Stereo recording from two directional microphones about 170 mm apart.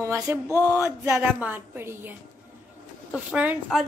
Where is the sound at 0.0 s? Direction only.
15° right (ahead or behind).